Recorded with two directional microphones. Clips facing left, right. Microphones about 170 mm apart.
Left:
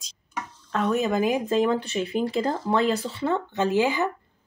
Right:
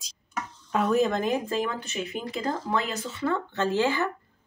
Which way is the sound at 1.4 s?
25° left (ahead or behind).